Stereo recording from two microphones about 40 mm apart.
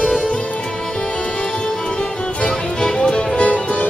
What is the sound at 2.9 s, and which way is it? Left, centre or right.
Music, left.